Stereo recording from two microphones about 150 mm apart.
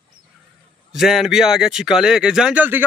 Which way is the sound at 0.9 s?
Centre (ahead or behind).